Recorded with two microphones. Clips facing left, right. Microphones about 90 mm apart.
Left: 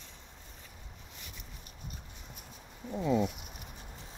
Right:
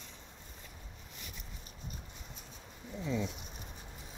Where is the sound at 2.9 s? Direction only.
60° left (ahead or behind).